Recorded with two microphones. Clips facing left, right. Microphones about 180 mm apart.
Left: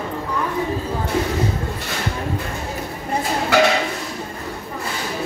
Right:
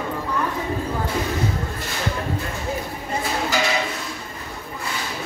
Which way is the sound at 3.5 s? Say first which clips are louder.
Left 10 dB; 65° left (ahead or behind).